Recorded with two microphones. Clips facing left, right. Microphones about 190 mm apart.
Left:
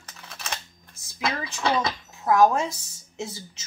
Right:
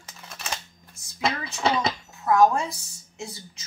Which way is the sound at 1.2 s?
20° right (ahead or behind).